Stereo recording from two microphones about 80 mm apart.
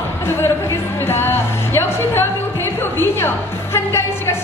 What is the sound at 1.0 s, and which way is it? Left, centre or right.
Music, left.